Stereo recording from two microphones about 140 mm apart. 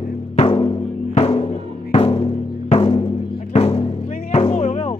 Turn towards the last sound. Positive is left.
turn(degrees=50)  # may be behind; listen again after turning